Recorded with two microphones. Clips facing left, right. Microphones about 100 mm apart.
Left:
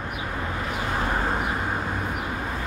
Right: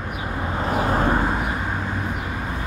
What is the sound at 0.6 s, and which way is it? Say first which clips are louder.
Vehicle: right 8 dB; 40° right (ahead or behind).